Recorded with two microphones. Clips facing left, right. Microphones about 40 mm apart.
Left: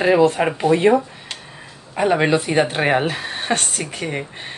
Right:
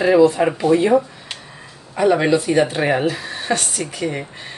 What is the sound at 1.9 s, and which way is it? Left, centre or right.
Speech, left.